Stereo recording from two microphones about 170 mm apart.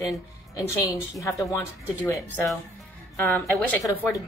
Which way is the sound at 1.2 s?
15° left (ahead or behind).